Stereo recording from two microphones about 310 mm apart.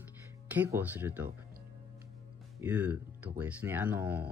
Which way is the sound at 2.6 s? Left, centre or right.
Centre.